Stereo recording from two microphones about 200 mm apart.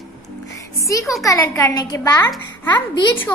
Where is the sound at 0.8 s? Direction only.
15° left (ahead or behind).